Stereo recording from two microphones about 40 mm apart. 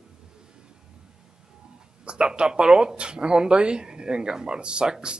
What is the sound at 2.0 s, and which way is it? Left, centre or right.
A man's voice, right.